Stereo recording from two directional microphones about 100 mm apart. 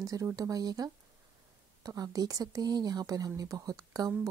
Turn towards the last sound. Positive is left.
turn(degrees=-40)  # may be behind; listen again after turning